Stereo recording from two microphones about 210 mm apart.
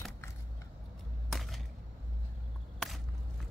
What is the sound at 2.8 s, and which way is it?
Walk, centre (ahead or behind).